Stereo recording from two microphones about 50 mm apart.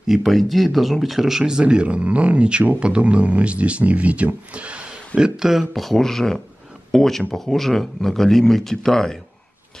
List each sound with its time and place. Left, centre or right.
0.0 s speech: centre
5.7 s speech: centre